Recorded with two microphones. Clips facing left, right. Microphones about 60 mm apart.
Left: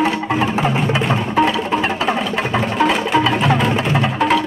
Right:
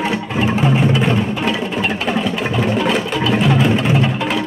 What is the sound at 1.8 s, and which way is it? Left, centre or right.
Music, left.